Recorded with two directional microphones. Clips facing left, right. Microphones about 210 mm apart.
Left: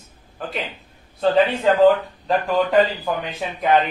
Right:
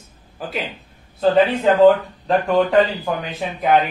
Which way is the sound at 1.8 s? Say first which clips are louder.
Right 2 dB; centre (ahead or behind).